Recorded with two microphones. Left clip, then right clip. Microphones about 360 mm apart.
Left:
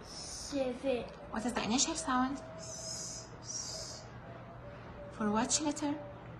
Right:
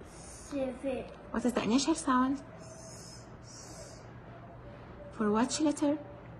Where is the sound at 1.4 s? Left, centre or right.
Centre.